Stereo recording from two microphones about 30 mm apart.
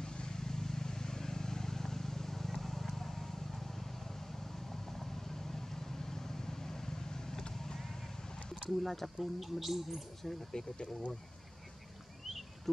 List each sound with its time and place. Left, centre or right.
0.0 s vehicle: left
8.6 s speech: centre
10.5 s speech: left
12.7 s a sound: centre